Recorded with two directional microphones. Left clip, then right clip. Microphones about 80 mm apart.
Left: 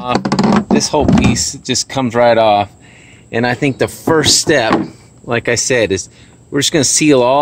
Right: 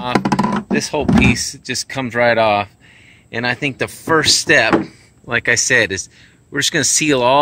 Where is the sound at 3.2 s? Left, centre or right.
Left.